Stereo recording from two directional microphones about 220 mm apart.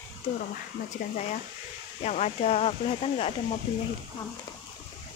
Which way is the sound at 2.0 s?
30° left (ahead or behind).